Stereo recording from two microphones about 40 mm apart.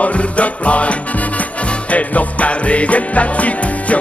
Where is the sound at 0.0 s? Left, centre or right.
Left.